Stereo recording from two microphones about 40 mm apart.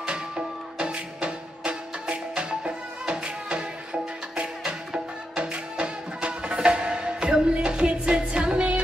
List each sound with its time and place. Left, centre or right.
0.7 s music: right